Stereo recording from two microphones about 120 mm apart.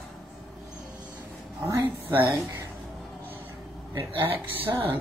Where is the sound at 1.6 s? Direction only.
15° right (ahead or behind).